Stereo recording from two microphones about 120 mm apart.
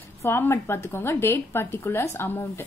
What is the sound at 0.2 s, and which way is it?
A woman's voice, 20° left (ahead or behind).